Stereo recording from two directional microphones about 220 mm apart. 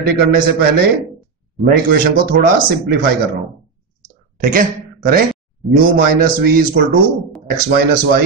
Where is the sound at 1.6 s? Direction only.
40° right (ahead or behind).